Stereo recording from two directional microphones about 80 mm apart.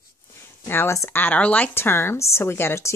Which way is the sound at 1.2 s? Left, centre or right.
Centre.